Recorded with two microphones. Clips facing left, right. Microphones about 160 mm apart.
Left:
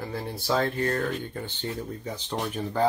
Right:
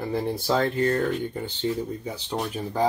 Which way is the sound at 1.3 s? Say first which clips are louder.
Right 6 dB; 15° right (ahead or behind).